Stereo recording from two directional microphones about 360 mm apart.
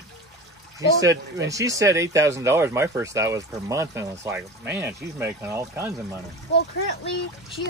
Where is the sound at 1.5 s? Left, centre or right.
Centre.